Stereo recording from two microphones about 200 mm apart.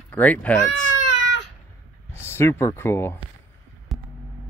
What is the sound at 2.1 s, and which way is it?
Speech, 10° left (ahead or behind).